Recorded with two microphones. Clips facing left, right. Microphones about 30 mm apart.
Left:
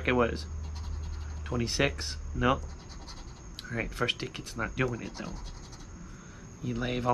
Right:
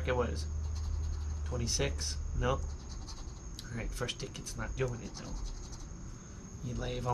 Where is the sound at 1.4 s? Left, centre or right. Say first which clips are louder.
Left 7 dB; left.